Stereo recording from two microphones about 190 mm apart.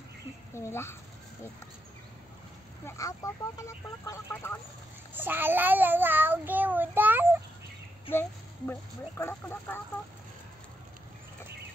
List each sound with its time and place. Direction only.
0.6 s speech: 15° left (ahead or behind)
2.9 s speech: 15° left (ahead or behind)
5.1 s child singing: 10° right (ahead or behind)
8.1 s speech: 10° left (ahead or behind)